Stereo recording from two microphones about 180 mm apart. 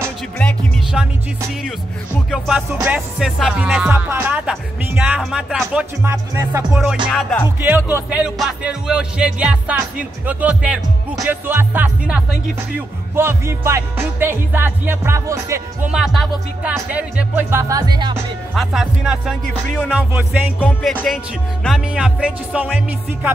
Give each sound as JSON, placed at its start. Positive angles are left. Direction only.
{"t": 0.4, "sound": "music", "side_deg": 5}
{"t": 2.3, "sound": "music", "side_deg": 0}
{"t": 6.3, "sound": "music", "side_deg": -15}
{"t": 7.1, "sound": "music", "side_deg": 5}
{"t": 7.4, "sound": "music", "side_deg": -10}
{"t": 15.9, "sound": "music", "side_deg": 0}
{"t": 18.5, "sound": "music", "side_deg": 0}
{"t": 20.1, "sound": "music", "side_deg": -10}